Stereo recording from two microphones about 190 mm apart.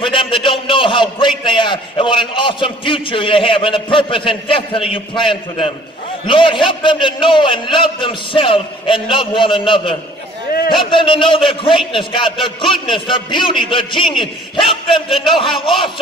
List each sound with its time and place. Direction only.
0.0 s a man's voice: 25° left (ahead or behind)